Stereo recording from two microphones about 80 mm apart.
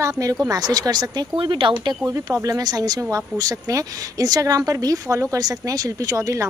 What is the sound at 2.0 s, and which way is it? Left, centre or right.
Speech, right.